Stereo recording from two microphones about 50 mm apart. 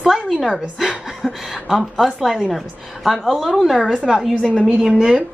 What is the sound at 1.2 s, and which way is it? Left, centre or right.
A woman's voice, centre.